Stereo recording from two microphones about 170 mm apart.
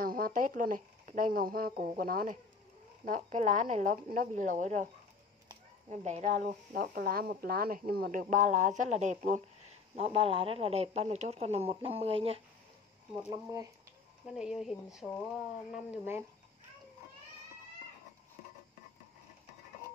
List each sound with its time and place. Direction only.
0.0 s speech: 55° right (ahead or behind)
3.1 s speech: 45° right (ahead or behind)
5.9 s speech: 45° right (ahead or behind)
9.9 s speech: 35° right (ahead or behind)
13.3 s speech: 20° right (ahead or behind)
14.2 s speech: centre (ahead or behind)